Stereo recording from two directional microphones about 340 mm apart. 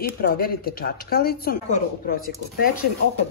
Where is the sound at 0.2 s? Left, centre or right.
Left.